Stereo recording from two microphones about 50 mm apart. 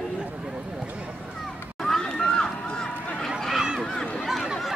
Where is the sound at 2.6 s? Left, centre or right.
Centre.